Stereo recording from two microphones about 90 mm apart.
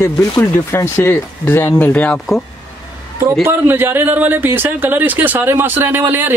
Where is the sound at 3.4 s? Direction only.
25° right (ahead or behind).